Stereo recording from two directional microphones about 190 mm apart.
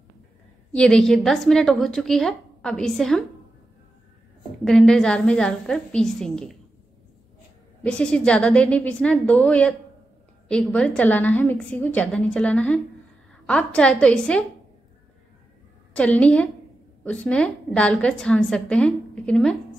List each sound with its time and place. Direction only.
0.7 s a woman's voice: 5° left (ahead or behind)
4.6 s a woman's voice: centre (ahead or behind)
7.8 s a woman's voice: 5° left (ahead or behind)
15.9 s a woman's voice: 5° left (ahead or behind)